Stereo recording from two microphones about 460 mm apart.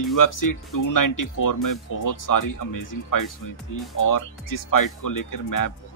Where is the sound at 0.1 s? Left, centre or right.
Left.